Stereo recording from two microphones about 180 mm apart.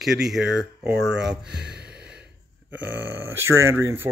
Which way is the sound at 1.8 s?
5° right (ahead or behind).